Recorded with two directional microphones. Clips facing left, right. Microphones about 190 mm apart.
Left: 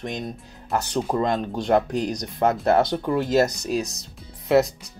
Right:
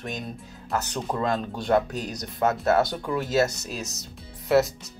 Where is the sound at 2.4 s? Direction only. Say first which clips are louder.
Left 2 dB; 30° left (ahead or behind).